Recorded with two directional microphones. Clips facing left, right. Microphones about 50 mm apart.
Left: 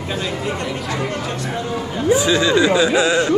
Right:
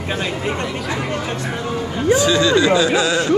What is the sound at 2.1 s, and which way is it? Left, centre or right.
Speech, centre.